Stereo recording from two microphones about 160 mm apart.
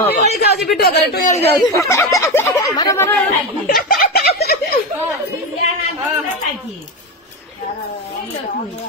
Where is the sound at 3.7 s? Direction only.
70° left (ahead or behind).